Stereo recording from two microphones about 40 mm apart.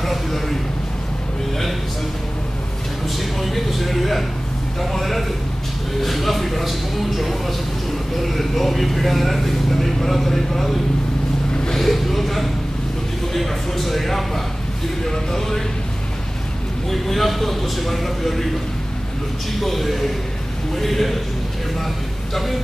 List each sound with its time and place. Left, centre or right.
0.0 s a sound: centre
3.3 s speech: centre
16.9 s speech: centre
19.6 s speech: centre